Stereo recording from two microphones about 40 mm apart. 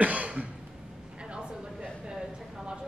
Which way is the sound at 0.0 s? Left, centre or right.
Right.